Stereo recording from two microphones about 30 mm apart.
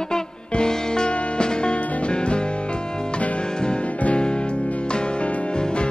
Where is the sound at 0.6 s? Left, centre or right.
Left.